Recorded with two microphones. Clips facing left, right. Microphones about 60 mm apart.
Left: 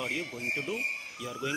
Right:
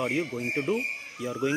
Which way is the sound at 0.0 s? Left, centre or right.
Right.